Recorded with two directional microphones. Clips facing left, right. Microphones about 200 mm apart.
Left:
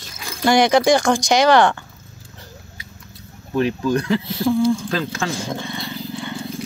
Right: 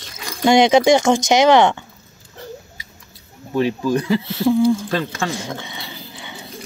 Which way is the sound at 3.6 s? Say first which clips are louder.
Right 1 dB; 5° right (ahead or behind).